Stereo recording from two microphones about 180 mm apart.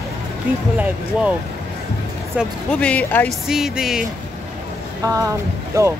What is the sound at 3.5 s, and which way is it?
Music, 5° right (ahead or behind).